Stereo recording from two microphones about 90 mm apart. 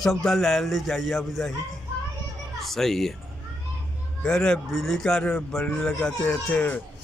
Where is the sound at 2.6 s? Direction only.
5° left (ahead or behind).